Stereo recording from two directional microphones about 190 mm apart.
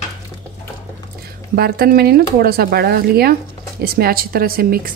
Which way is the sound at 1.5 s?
55° right (ahead or behind).